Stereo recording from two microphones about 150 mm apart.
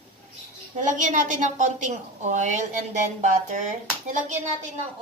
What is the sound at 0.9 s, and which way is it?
A woman's voice, 60° right (ahead or behind).